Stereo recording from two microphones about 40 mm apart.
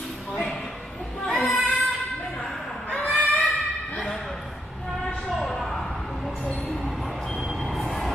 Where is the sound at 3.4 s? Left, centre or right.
Centre.